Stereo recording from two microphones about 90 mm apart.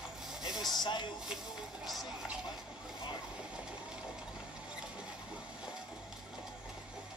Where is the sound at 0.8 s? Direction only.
55° left (ahead or behind).